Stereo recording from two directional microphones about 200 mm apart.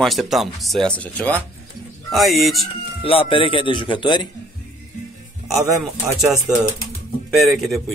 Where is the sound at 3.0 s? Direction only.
25° left (ahead or behind).